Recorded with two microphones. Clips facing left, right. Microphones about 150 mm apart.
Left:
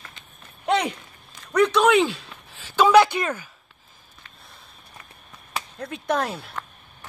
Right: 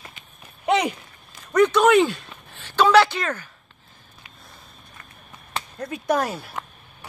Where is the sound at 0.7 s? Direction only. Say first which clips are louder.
Right 2 dB; 5° right (ahead or behind); by 3.4 s 15° left (ahead or behind).